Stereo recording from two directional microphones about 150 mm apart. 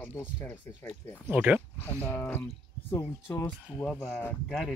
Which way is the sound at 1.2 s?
10° right (ahead or behind).